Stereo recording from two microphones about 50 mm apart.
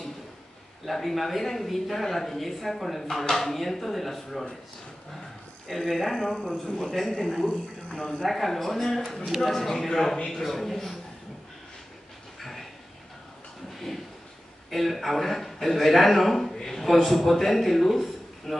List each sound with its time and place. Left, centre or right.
0.8 s speech: centre
5.7 s speech: centre
8.2 s speech: centre
10.1 s speech: centre
10.4 s speech: centre
12.4 s a sound: centre
14.7 s a man's voice: centre